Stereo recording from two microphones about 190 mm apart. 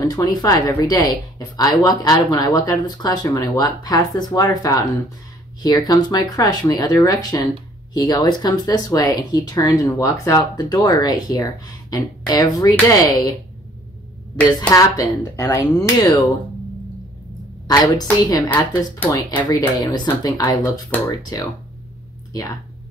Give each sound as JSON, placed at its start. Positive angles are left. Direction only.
{"t": 0.0, "sound": "a woman's voice", "side_deg": 20}
{"t": 14.4, "sound": "a woman's voice", "side_deg": 20}
{"t": 17.6, "sound": "speech", "side_deg": 20}